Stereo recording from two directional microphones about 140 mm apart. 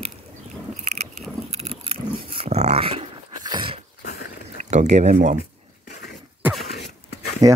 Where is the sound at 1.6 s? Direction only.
45° right (ahead or behind).